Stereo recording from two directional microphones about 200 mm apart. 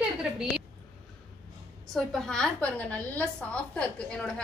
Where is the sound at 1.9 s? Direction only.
Centre (ahead or behind).